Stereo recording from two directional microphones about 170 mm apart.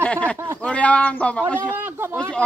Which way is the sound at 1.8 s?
15° right (ahead or behind).